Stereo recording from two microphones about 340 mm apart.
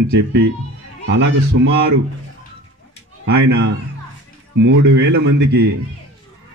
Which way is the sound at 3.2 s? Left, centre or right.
Right.